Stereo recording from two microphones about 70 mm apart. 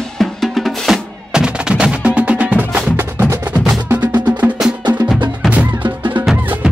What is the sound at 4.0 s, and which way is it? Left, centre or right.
Music, right.